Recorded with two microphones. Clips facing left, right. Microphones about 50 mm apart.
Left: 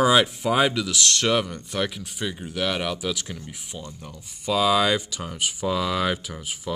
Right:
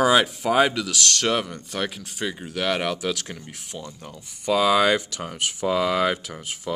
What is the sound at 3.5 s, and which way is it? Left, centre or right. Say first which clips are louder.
Speech: right 1 dB; centre.